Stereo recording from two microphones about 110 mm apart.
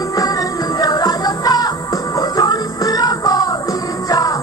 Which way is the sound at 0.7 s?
35° left (ahead or behind).